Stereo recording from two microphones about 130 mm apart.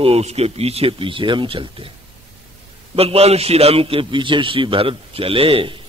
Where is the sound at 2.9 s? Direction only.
50° right (ahead or behind).